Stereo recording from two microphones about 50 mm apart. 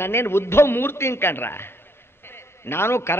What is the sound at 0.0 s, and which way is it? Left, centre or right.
A man's voice, left.